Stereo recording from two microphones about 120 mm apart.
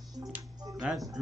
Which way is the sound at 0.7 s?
5° right (ahead or behind).